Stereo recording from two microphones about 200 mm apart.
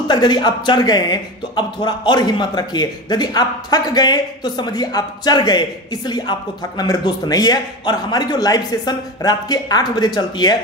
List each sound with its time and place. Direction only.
0.1 s speech: 20° left (ahead or behind)